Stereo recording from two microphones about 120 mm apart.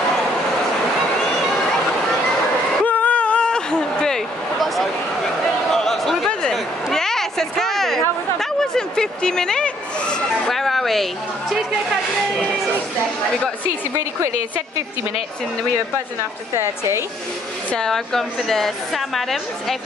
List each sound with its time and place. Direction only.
2.8 s a sound: 15° left (ahead or behind)
8.4 s speech: 5° left (ahead or behind)
16.5 s a woman's voice: 25° right (ahead or behind)
17.7 s a woman's voice: 5° left (ahead or behind)